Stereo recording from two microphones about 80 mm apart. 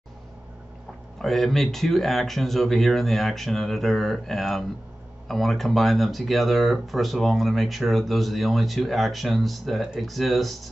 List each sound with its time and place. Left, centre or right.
1.2 s speech: centre